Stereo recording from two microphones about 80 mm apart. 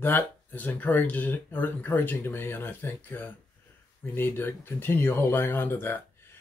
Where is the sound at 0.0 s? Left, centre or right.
Left.